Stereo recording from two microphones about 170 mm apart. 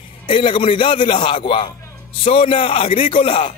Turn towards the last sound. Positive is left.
turn(degrees=30)  # may be behind; listen again after turning